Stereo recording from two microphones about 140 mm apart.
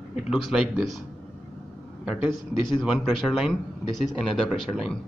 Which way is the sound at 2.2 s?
35° left (ahead or behind).